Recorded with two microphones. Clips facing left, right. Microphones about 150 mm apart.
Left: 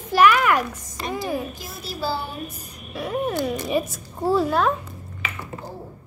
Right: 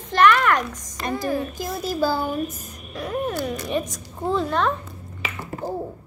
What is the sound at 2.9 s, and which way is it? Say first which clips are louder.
A woman's voice: left 1 dB; 5° left (ahead or behind).